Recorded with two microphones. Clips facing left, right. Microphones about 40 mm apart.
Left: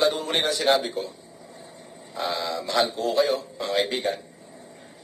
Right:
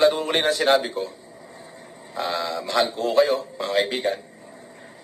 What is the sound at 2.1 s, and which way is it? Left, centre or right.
Speech, centre.